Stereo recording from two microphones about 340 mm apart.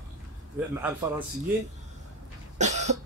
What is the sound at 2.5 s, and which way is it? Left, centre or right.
Cough, centre.